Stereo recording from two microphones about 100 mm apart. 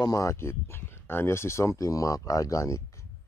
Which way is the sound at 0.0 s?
35° left (ahead or behind).